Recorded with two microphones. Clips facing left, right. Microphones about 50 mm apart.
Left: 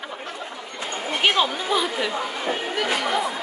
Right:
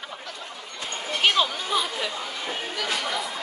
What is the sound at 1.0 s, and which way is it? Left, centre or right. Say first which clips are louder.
Chatter: left 2 dB; centre.